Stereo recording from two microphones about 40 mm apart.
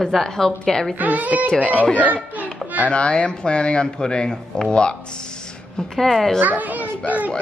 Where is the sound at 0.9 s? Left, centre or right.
Right.